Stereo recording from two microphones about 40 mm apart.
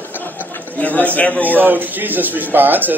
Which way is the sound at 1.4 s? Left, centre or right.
Right.